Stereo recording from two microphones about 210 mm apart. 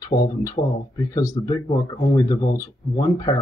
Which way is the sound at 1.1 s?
15° left (ahead or behind).